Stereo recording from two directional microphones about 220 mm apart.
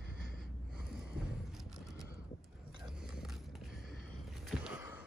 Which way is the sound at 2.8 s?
Centre (ahead or behind).